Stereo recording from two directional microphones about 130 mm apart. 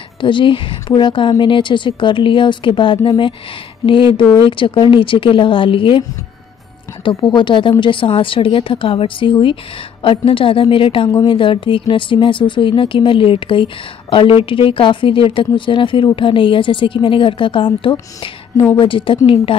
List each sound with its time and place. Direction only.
0.2 s a woman's voice: 40° left (ahead or behind)
7.2 s speech: 35° left (ahead or behind)